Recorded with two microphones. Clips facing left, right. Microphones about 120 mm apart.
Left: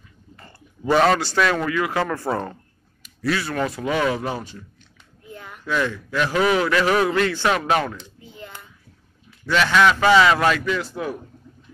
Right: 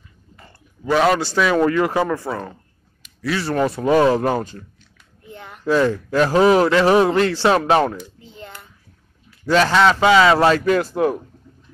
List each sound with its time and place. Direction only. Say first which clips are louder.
0.8 s a man's voice: right 1 dB; centre (ahead or behind)
1.7 s speech: right 5 dB; 35° right (ahead or behind)
2.0 s a man's voice: right 4 dB; 10° right (ahead or behind)
3.3 s speech: right 5 dB; 30° right (ahead or behind)
3.9 s speech: right 9 dB; 40° right (ahead or behind)
5.3 s speech: right 7 dB; 25° right (ahead or behind)
9.5 s speech: right 3 dB; 35° right (ahead or behind)
10.0 s a man's voice: right 2 dB; 15° right (ahead or behind)
10.3 s speech: right 5 dB; 30° right (ahead or behind)
11.0 s speech: right 9 dB; 55° right (ahead or behind)